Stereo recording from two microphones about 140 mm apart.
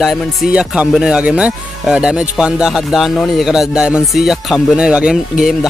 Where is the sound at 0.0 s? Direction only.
5° right (ahead or behind).